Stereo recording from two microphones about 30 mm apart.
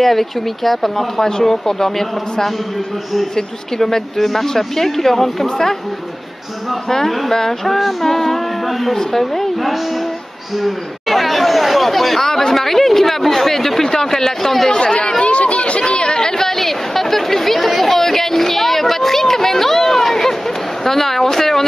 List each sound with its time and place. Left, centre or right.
0.0 s speech: centre
7.3 s speech: centre
10.6 s chatter: centre
12.2 s speech: centre
14.7 s speech: left
15.2 s chatter: left
15.8 s chatter: left; by 20.3 s centre
20.8 s a sound: centre